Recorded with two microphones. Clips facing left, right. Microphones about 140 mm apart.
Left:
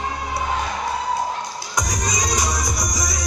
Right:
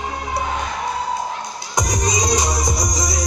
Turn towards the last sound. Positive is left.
turn(degrees=-25)  # may be behind; listen again after turning